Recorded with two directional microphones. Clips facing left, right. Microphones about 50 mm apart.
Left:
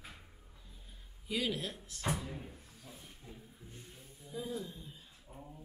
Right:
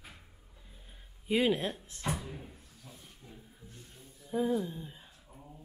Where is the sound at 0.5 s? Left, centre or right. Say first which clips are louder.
Right 4 dB; right.